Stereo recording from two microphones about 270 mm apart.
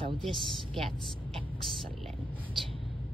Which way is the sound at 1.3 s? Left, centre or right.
Centre.